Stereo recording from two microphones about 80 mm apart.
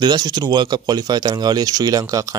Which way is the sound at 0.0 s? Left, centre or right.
Right.